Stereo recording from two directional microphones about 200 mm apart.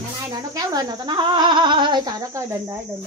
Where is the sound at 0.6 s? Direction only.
20° right (ahead or behind).